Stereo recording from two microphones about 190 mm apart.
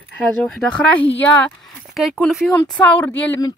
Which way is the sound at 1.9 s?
Centre (ahead or behind).